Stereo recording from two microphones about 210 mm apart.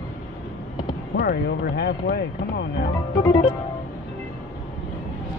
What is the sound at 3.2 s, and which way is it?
Music, 20° left (ahead or behind).